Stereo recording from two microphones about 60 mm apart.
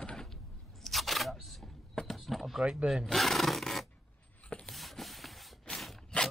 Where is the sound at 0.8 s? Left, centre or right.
Centre.